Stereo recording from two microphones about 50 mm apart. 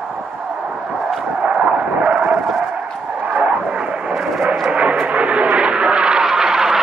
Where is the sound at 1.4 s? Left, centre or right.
Right.